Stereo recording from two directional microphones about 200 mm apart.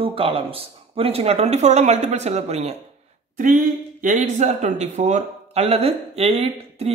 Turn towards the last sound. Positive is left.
turn(degrees=-30)  # may be behind; listen again after turning